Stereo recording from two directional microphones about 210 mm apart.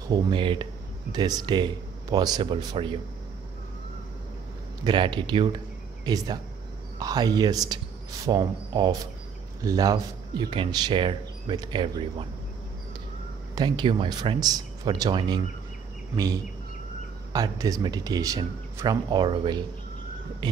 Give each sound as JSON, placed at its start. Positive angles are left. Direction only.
{"t": 0.1, "sound": "speech", "side_deg": -25}
{"t": 4.8, "sound": "a man's voice", "side_deg": -20}
{"t": 13.6, "sound": "speech", "side_deg": -20}
{"t": 17.3, "sound": "speech", "side_deg": -15}